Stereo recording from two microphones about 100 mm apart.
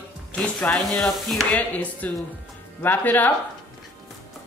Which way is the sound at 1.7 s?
15° left (ahead or behind).